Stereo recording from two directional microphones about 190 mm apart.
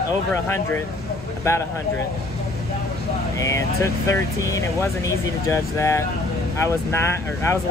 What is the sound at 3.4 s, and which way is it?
Speech, 15° left (ahead or behind).